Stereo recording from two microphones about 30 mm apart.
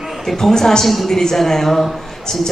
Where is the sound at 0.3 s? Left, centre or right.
Centre.